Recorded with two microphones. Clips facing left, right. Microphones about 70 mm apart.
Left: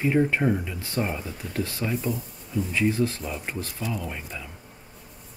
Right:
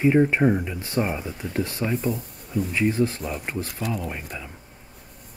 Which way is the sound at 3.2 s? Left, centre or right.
Centre.